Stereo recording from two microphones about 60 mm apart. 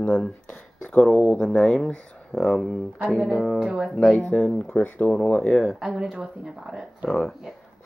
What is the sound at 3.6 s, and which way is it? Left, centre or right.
Speech, centre.